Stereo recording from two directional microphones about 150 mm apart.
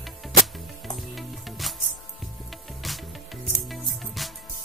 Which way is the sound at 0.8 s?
Centre (ahead or behind).